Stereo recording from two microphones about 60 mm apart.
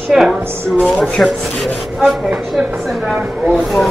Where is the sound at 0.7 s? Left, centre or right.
Centre.